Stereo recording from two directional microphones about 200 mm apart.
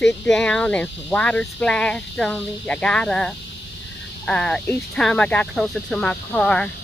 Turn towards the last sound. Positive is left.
turn(degrees=5)  # may be behind; listen again after turning